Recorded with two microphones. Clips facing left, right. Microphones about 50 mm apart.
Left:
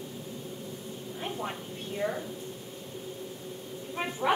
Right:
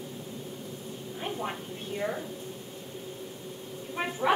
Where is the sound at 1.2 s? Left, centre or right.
Centre.